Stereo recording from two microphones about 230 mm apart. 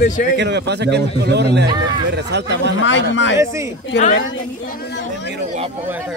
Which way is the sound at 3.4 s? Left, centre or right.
Centre.